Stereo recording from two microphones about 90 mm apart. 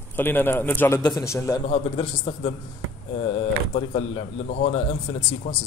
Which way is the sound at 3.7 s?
90° left.